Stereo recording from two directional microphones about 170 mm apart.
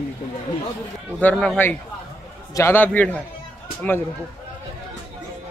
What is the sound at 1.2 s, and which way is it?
A man's voice, 5° left (ahead or behind).